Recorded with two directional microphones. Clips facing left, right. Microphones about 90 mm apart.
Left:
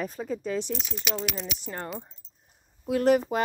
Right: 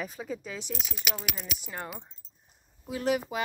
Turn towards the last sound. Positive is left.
turn(degrees=45)  # may be behind; listen again after turning